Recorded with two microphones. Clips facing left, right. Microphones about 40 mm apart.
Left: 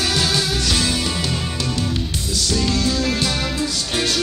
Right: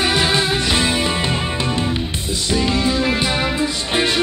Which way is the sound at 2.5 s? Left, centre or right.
Right.